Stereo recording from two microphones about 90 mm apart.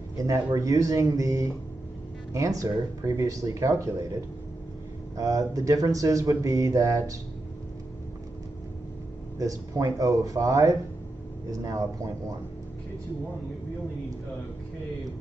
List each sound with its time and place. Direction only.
0.6 s speech: 40° right (ahead or behind)
9.4 s speech: 40° right (ahead or behind)